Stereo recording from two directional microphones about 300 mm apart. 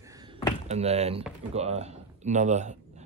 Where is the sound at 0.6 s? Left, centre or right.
Right.